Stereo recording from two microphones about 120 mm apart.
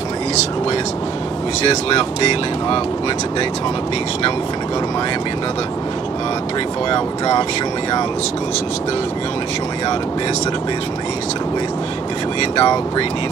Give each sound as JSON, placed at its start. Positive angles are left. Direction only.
{"t": 2.0, "sound": "speech", "side_deg": 50}
{"t": 6.9, "sound": "speech", "side_deg": 45}
{"t": 12.5, "sound": "speech", "side_deg": 45}